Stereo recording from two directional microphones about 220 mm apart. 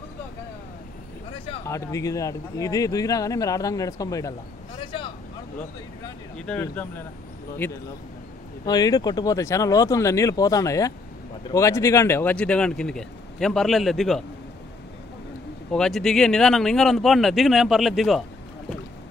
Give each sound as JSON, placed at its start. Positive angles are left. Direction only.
{"t": 1.7, "sound": "speech", "side_deg": 15}
{"t": 4.9, "sound": "vehicle", "side_deg": 25}
{"t": 5.6, "sound": "speech", "side_deg": 5}
{"t": 15.7, "sound": "speech", "side_deg": 0}